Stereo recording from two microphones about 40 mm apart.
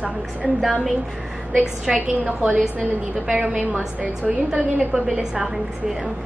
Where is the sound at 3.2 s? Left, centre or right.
Right.